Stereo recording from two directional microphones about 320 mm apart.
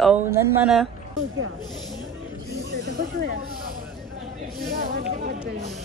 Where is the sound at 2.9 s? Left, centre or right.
Right.